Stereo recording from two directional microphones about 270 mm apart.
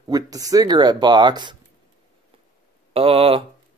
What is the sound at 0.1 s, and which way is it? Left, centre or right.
Speech, centre.